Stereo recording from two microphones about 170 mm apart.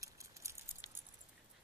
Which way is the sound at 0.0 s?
15° right (ahead or behind).